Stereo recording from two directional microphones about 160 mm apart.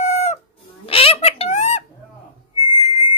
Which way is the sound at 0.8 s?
35° left (ahead or behind).